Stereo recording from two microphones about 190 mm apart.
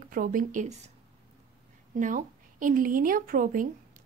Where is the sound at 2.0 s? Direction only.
45° right (ahead or behind).